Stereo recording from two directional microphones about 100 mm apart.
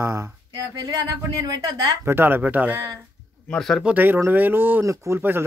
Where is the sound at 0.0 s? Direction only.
35° right (ahead or behind).